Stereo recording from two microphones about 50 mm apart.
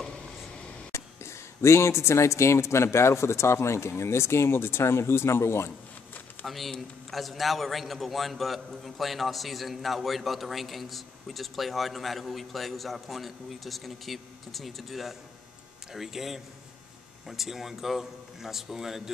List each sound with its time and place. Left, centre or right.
0.9 s speech: left
6.4 s a man's voice: centre